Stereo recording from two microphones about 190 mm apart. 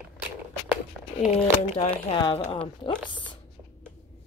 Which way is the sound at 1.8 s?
30° left (ahead or behind).